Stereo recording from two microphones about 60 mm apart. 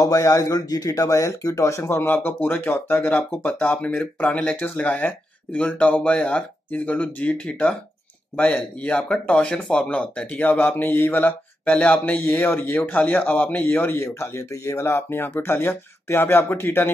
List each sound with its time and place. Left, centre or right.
0.0 s speech: left
1.9 s speech: left
8.7 s speech: centre
10.4 s speech: left
12.4 s speech: left
14.0 s speech: left